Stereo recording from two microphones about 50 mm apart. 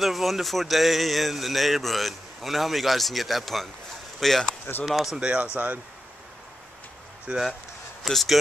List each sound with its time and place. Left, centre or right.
0.0 s speech: centre
5.2 s speech: right
7.3 s speech: centre
8.0 s speech: centre